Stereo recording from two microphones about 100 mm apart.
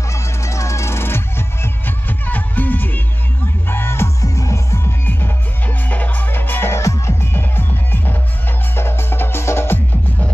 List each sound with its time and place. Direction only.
0.1 s music: 30° left (ahead or behind)